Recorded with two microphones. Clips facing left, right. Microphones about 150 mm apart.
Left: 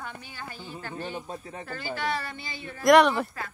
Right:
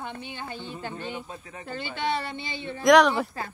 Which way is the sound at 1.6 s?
25° right (ahead or behind).